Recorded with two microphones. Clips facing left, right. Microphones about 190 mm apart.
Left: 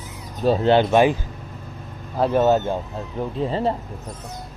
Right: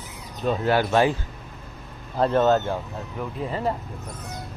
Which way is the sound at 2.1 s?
5° left (ahead or behind).